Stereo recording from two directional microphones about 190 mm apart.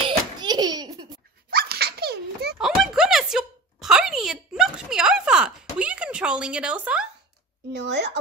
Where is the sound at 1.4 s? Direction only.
55° right (ahead or behind).